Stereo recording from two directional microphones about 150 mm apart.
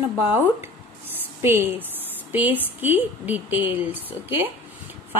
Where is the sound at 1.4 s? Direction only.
15° right (ahead or behind).